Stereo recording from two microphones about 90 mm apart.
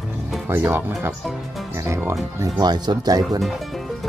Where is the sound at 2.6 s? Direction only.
50° right (ahead or behind).